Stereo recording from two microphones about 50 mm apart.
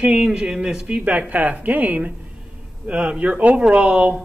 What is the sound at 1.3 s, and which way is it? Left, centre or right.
Speech, right.